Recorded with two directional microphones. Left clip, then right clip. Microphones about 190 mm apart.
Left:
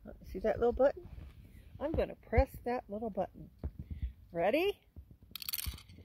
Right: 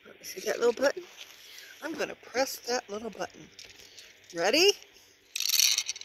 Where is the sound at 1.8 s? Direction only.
30° right (ahead or behind).